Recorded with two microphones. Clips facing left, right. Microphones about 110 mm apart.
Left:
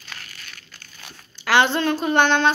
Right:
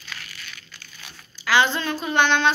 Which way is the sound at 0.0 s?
45° left (ahead or behind).